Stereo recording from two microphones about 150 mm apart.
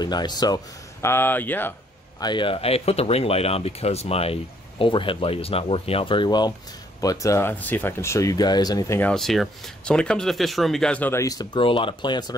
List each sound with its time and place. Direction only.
0.0 s speech: 30° left (ahead or behind)
1.0 s speech: 15° left (ahead or behind)
2.1 s speech: 30° left (ahead or behind)
9.1 s speech: centre (ahead or behind); by 12.4 s 30° left (ahead or behind)